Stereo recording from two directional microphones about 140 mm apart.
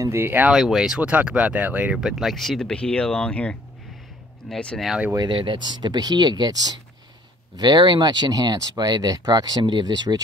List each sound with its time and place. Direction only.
0.0 s speech: 20° right (ahead or behind)
0.5 s speech: 5° right (ahead or behind)
5.1 s speech: 35° right (ahead or behind)